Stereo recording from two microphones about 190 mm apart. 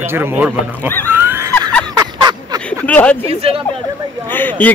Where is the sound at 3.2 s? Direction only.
30° right (ahead or behind).